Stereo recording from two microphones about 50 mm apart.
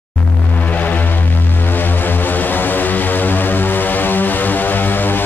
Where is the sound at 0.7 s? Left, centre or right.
Left.